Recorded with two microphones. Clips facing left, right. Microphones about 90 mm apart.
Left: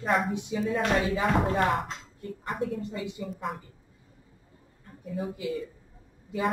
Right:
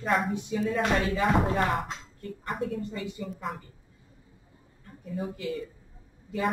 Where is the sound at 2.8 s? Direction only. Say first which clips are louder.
Even; 15° left (ahead or behind).